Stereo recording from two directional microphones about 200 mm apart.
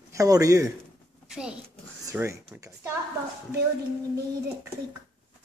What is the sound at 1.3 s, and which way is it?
Speech, 5° right (ahead or behind).